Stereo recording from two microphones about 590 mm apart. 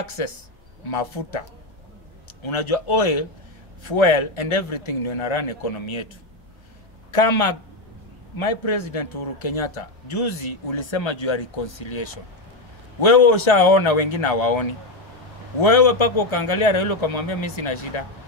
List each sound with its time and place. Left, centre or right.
0.8 s speech: left
2.4 s speech: left
7.1 s speech: left